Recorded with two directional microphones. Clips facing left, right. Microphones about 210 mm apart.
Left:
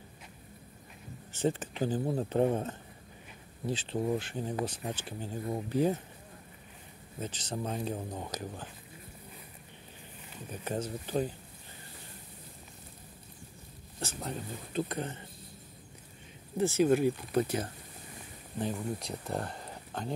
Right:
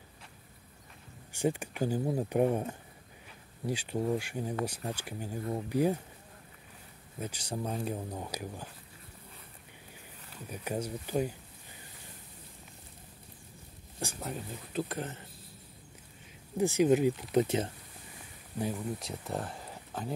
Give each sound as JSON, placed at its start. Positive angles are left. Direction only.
{"t": 1.3, "sound": "speech", "side_deg": -10}
{"t": 3.6, "sound": "speech", "side_deg": -10}
{"t": 7.2, "sound": "speech", "side_deg": -10}
{"t": 7.7, "sound": "speech", "side_deg": 0}
{"t": 8.1, "sound": "speech", "side_deg": -10}
{"t": 10.5, "sound": "speech", "side_deg": -10}
{"t": 13.9, "sound": "speech", "side_deg": -10}
{"t": 16.5, "sound": "speech", "side_deg": -15}
{"t": 18.6, "sound": "speech", "side_deg": 0}